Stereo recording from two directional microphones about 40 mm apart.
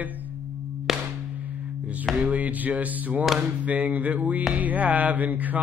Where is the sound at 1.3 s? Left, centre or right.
Right.